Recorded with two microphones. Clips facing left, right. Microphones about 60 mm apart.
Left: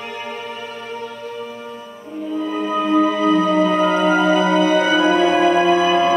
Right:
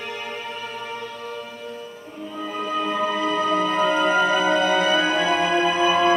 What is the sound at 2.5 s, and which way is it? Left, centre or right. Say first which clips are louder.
Music: left 7 dB; centre.